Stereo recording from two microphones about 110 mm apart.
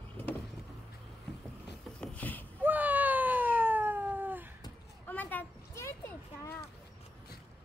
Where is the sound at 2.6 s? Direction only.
15° right (ahead or behind).